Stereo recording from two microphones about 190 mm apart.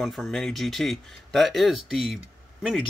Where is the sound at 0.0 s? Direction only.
Centre (ahead or behind).